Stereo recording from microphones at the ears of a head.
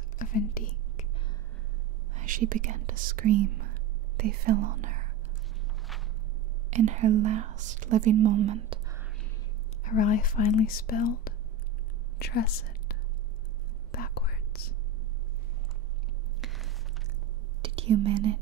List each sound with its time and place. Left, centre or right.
0.2 s whispering: left
2.1 s speech: right
6.7 s speech: right
9.8 s a woman's voice: left
13.9 s whispering: left
16.3 s a sound: centre
17.6 s whispering: right